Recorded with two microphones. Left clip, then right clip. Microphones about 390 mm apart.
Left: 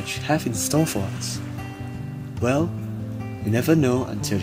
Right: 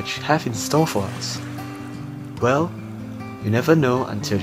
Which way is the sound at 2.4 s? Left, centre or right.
Centre.